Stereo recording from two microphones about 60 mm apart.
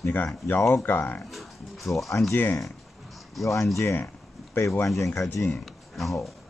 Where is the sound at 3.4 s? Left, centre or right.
Left.